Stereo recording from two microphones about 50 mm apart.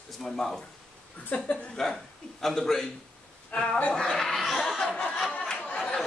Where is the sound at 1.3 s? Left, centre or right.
Left.